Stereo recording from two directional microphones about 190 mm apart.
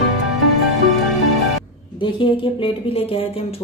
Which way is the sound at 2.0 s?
25° left (ahead or behind).